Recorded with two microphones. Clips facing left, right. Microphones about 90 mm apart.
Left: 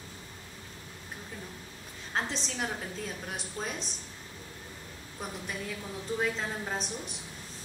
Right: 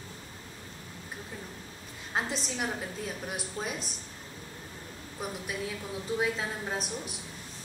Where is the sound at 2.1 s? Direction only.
5° right (ahead or behind).